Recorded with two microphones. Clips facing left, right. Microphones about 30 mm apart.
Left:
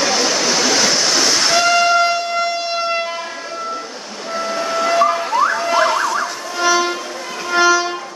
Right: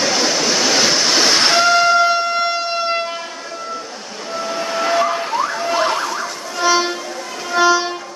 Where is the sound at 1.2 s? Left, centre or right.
Right.